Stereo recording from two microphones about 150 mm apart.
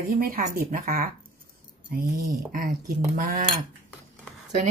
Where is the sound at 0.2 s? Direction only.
65° right (ahead or behind).